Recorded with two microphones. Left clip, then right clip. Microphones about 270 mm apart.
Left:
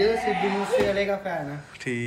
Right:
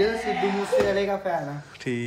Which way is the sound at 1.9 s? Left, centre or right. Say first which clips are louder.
Even; centre.